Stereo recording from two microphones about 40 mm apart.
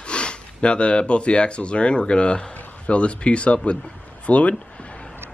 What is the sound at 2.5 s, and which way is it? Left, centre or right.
Speech, left.